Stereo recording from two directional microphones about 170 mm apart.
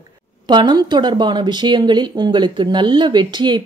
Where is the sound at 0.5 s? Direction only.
25° right (ahead or behind).